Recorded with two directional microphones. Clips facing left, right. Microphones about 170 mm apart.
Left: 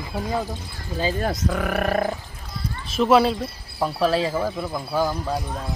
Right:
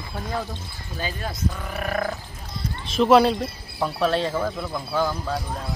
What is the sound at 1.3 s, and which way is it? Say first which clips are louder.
Speech: left 6 dB; 85° left.